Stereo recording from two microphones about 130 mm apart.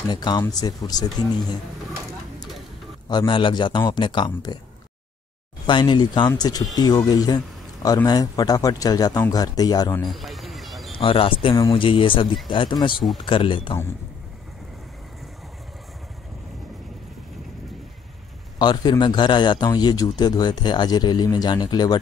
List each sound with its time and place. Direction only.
0.1 s speech: 30° left (ahead or behind)
3.1 s speech: 35° left (ahead or behind)
5.7 s speech: 35° left (ahead or behind)
10.0 s a sound: centre (ahead or behind)
11.0 s speech: 40° left (ahead or behind)
12.9 s speech: centre (ahead or behind)
13.2 s speech: 40° left (ahead or behind)
18.6 s speech: 35° left (ahead or behind)